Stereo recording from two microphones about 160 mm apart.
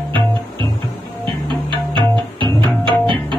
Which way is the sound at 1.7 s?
30° right (ahead or behind).